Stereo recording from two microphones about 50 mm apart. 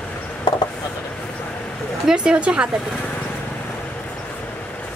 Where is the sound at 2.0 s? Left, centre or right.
Centre.